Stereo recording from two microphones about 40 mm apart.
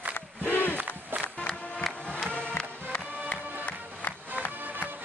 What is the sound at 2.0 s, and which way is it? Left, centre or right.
Music, left.